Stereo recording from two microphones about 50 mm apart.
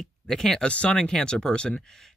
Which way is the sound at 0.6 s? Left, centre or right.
Left.